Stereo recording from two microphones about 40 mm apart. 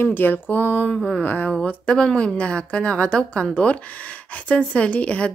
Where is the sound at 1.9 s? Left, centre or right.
Left.